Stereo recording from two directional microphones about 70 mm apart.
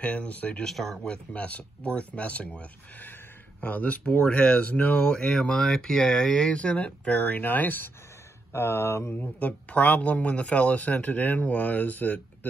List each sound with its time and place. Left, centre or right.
0.0 s speech: centre
0.7 s speech: centre; by 7.9 s left
8.5 s speech: left
9.1 s speech: left